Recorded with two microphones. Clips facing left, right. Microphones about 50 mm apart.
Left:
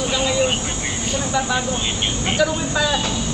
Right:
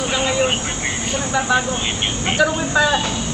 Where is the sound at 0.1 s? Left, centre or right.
Right.